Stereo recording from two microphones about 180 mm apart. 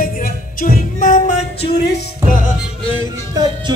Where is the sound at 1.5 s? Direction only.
65° left (ahead or behind).